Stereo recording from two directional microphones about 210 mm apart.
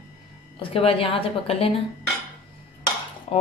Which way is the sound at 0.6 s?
25° left (ahead or behind).